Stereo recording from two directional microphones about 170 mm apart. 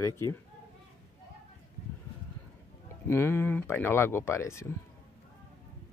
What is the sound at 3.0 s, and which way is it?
Speech, 15° left (ahead or behind).